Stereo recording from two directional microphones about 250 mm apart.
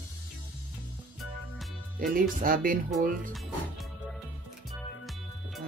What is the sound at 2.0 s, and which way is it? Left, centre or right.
Speech, right.